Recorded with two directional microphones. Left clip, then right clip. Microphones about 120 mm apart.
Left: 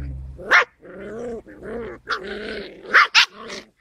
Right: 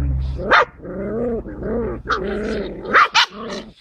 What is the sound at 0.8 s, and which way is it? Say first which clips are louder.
Dog: right 8 dB; 30° left (ahead or behind).